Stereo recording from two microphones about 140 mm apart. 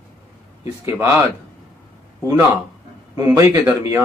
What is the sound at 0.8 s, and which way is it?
Speech, 20° right (ahead or behind).